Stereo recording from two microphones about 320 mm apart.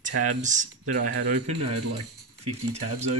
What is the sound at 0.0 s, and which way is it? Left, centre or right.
Speech, right.